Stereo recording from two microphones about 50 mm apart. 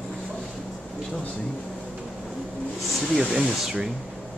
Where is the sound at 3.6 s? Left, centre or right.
Centre.